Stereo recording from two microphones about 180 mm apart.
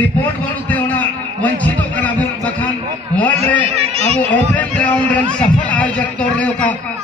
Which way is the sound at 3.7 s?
35° right (ahead or behind).